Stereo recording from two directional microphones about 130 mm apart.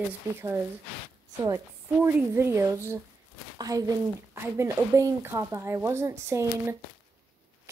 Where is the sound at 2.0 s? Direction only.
20° right (ahead or behind).